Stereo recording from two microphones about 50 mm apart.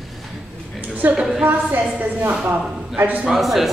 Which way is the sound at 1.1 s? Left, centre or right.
Centre.